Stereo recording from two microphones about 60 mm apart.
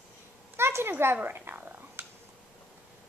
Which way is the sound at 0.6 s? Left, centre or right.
Right.